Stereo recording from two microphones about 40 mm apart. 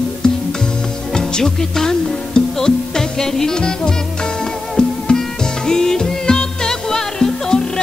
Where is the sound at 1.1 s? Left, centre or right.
Centre.